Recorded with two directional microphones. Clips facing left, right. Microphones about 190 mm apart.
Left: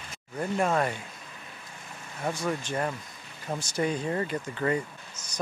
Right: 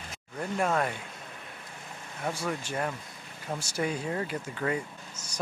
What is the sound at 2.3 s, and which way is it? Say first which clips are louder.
Speech: left 4 dB; 5° right (ahead or behind).